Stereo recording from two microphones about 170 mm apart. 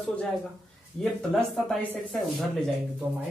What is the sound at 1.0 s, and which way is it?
Speech, centre (ahead or behind).